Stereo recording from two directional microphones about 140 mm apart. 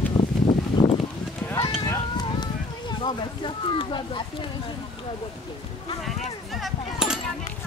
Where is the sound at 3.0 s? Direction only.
35° left (ahead or behind).